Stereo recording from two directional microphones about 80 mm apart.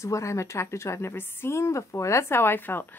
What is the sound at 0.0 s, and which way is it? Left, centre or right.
A woman's voice, left.